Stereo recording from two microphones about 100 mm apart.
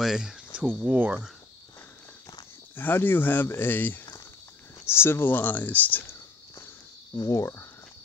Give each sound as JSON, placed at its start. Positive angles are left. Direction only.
{"t": 0.0, "sound": "speech", "side_deg": -5}
{"t": 2.7, "sound": "speech", "side_deg": 20}
{"t": 7.2, "sound": "speech", "side_deg": 30}